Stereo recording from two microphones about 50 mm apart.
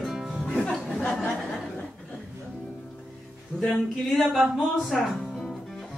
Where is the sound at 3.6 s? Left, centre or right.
Centre.